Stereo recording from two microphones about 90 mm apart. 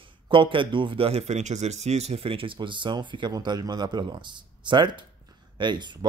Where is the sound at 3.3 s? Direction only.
45° right (ahead or behind).